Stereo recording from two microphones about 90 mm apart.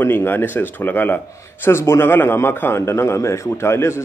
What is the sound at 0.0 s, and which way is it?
A man's voice, 25° left (ahead or behind).